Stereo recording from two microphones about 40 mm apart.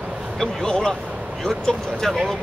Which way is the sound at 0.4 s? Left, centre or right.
Centre.